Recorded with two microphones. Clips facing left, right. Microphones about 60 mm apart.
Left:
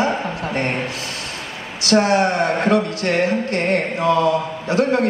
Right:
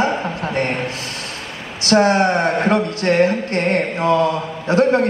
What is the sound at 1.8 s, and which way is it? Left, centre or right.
A man's voice, right.